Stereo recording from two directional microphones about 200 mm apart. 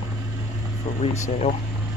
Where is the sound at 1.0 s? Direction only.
35° left (ahead or behind).